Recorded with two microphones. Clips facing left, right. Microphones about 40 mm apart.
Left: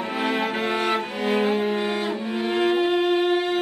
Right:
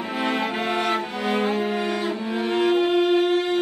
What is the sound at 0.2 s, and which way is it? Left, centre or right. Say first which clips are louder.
Music: even; centre.